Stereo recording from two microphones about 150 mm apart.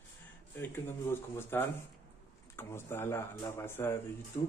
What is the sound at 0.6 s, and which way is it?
Speech, 15° left (ahead or behind).